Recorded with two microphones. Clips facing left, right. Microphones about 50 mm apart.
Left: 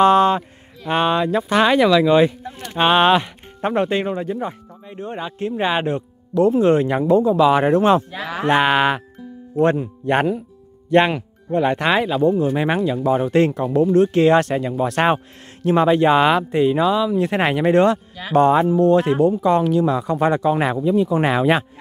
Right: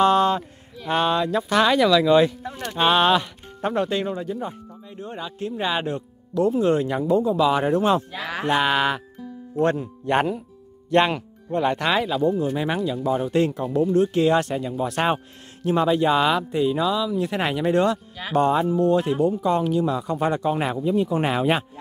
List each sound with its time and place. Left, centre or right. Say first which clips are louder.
0.0 s speech: left 4 dB; left
8.5 s speech: left 5 dB; left
12.3 s speech: left 5 dB; left
18.3 s speech: left 5 dB; left